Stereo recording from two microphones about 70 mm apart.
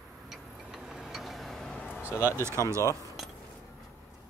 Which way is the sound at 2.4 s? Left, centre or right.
Right.